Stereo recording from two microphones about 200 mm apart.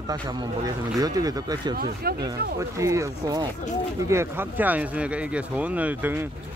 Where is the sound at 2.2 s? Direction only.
15° right (ahead or behind).